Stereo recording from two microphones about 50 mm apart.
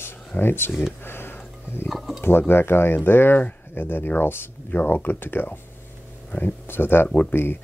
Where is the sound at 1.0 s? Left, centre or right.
Left.